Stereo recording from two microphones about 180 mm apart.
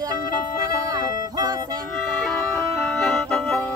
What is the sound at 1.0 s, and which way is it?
Music, 45° left (ahead or behind).